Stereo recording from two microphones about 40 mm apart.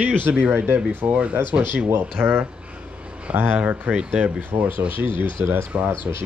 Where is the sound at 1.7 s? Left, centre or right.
Right.